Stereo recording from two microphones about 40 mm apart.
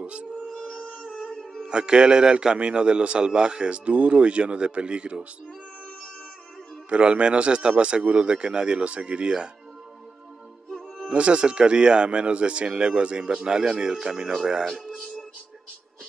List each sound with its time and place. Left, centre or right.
0.0 s music: right
1.6 s speech: right
6.9 s speech: right
11.1 s speech: right